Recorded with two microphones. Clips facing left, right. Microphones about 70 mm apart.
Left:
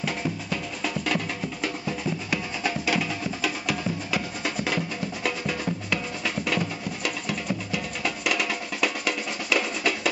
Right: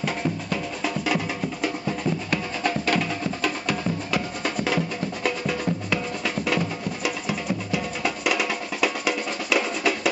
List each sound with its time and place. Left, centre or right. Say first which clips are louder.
0.0 s music: right 3 dB; centre